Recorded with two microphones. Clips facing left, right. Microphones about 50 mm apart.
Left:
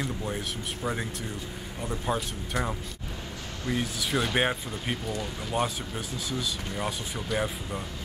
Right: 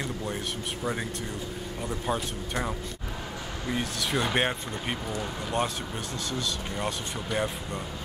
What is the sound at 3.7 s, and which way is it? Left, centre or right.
Speech, centre.